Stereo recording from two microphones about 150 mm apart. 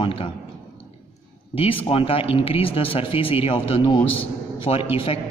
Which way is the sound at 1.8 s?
40° left (ahead or behind).